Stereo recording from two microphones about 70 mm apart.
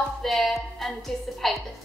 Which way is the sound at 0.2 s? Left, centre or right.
Centre.